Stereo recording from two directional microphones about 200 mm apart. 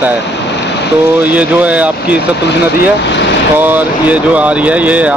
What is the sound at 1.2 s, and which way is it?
Speech, 5° right (ahead or behind).